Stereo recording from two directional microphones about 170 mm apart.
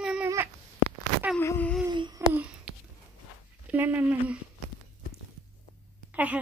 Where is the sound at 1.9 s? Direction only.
25° right (ahead or behind).